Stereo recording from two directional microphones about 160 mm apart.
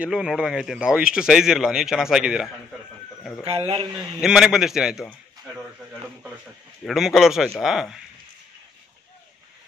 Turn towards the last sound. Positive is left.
turn(degrees=0)  # may be behind; listen again after turning